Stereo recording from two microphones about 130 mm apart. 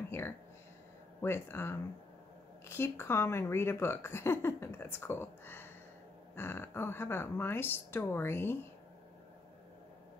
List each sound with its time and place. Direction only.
1.2 s a woman's voice: 15° left (ahead or behind)